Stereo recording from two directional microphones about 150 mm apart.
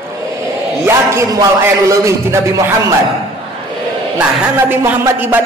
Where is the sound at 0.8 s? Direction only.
20° right (ahead or behind).